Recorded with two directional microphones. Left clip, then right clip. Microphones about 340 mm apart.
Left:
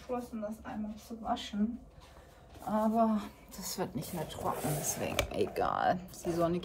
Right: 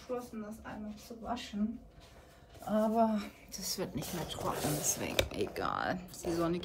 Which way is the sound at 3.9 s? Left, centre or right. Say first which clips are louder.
Even; centre.